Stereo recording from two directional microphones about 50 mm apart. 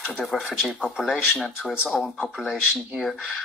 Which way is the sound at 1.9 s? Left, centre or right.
Left.